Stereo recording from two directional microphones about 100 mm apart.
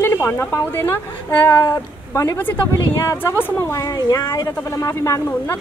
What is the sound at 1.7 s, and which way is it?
Speech, 35° left (ahead or behind).